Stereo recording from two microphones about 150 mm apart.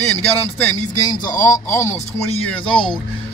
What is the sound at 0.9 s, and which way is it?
Speech, 25° left (ahead or behind).